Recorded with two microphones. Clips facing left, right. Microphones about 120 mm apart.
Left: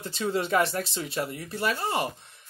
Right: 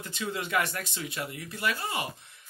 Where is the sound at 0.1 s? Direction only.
35° left (ahead or behind).